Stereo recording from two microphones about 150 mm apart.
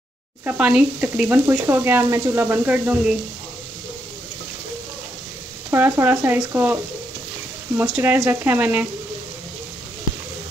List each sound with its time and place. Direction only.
0.5 s speech: 5° right (ahead or behind)
5.7 s speech: 15° right (ahead or behind)